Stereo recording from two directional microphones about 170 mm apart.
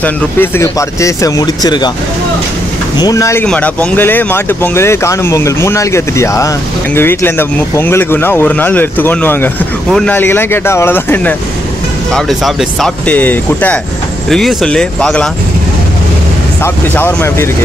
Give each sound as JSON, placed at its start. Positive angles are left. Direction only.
{"t": 0.0, "sound": "speech", "side_deg": 15}
{"t": 3.0, "sound": "speech", "side_deg": 20}
{"t": 3.4, "sound": "speech", "side_deg": 5}
{"t": 16.6, "sound": "speech", "side_deg": 15}